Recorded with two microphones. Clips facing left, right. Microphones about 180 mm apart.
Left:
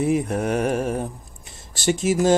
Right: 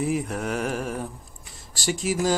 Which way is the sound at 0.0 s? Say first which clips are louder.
Left 5 dB; 25° left (ahead or behind).